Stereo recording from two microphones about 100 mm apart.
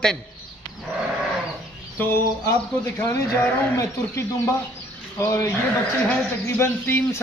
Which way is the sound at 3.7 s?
35° left (ahead or behind).